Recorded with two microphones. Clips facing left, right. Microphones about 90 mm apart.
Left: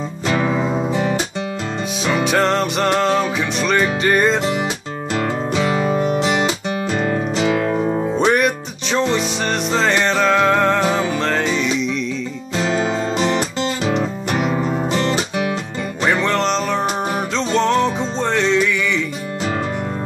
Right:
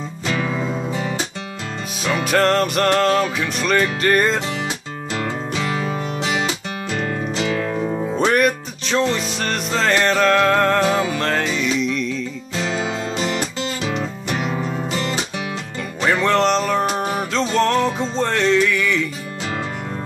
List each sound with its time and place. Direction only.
0.3 s music: 25° left (ahead or behind)
2.2 s music: 5° left (ahead or behind)
5.6 s music: 15° left (ahead or behind)
5.9 s music: 40° left (ahead or behind)
6.4 s music: 20° left (ahead or behind)
8.2 s music: 5° left (ahead or behind)
14.4 s music: 10° left (ahead or behind)
14.7 s music: 30° left (ahead or behind)
16.4 s music: 5° right (ahead or behind)